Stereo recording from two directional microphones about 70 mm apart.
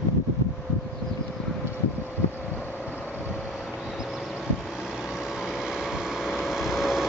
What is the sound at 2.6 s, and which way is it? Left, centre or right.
Vehicle, left.